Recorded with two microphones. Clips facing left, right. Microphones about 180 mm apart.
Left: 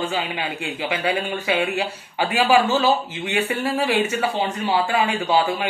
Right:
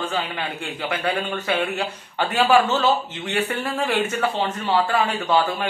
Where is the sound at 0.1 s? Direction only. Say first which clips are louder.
Left 1 dB; 10° left (ahead or behind).